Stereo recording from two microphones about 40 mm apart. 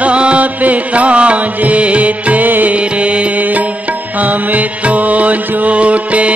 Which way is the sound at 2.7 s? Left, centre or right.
Right.